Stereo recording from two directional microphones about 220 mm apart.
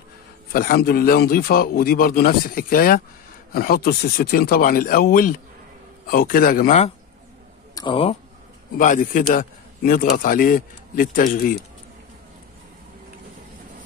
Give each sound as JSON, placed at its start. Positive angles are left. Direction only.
{"t": 0.5, "sound": "a man's voice", "side_deg": 40}
{"t": 7.7, "sound": "speech", "side_deg": 20}
{"t": 8.7, "sound": "a man's voice", "side_deg": 35}